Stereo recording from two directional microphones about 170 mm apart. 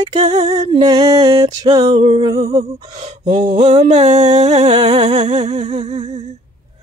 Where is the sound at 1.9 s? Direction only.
35° right (ahead or behind).